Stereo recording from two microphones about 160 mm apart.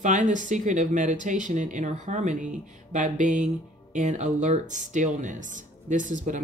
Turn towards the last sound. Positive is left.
turn(degrees=-55)  # may be behind; listen again after turning